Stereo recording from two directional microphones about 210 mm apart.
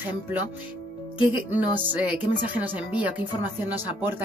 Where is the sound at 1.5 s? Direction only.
10° right (ahead or behind).